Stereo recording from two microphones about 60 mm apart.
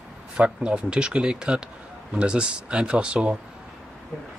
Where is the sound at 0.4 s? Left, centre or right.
Centre.